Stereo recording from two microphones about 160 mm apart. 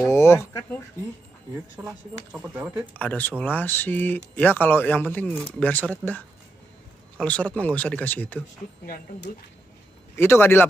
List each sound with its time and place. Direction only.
0.0 s speech: 15° left (ahead or behind)
1.8 s speech: 25° right (ahead or behind)
2.3 s speech: 10° right (ahead or behind)
3.0 s speech: 10° left (ahead or behind)
8.8 s speech: 70° left (ahead or behind)
10.1 s speech: 15° left (ahead or behind)